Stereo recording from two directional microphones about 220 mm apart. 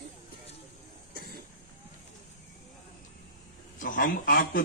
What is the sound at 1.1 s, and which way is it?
Cough, 45° right (ahead or behind).